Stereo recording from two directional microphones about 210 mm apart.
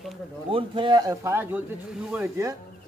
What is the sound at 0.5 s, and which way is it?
A man's voice, 25° right (ahead or behind).